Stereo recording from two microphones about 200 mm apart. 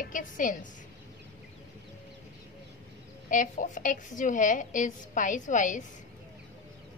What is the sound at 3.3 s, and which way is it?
A woman's voice, 40° left (ahead or behind).